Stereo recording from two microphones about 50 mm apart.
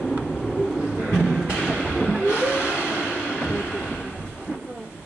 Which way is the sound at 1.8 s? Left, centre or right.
Centre.